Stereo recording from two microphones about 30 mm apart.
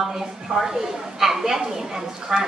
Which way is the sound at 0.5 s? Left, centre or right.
Centre.